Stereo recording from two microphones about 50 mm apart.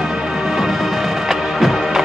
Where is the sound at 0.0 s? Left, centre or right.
Centre.